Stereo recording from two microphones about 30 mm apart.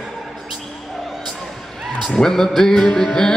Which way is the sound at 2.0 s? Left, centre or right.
Left.